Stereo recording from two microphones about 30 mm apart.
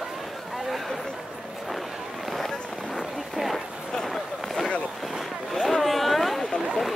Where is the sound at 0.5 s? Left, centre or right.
Centre.